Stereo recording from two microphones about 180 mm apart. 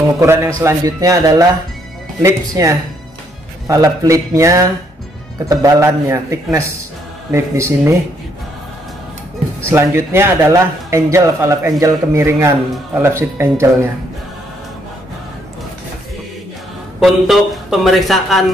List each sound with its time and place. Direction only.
0.2 s speech: 15° right (ahead or behind)
9.7 s speech: 15° right (ahead or behind)
17.0 s speech: centre (ahead or behind)